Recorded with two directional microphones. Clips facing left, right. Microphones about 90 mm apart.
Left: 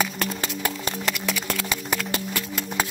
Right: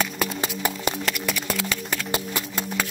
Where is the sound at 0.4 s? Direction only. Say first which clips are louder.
Right 1 dB; 15° right (ahead or behind).